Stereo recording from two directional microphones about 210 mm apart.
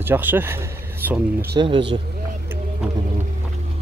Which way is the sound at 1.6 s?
25° right (ahead or behind).